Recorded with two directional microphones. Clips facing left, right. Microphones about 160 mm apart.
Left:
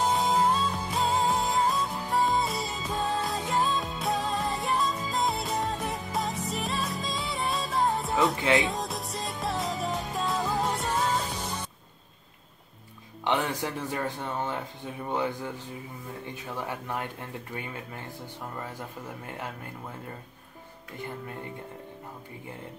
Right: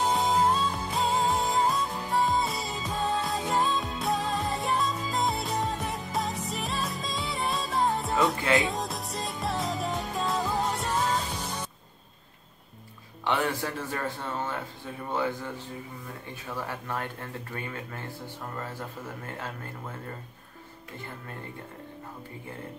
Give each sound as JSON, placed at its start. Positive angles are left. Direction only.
{"t": 0.0, "sound": "music", "side_deg": 0}
{"t": 13.2, "sound": "speech", "side_deg": 20}
{"t": 16.5, "sound": "speech", "side_deg": 15}
{"t": 19.2, "sound": "speech", "side_deg": 15}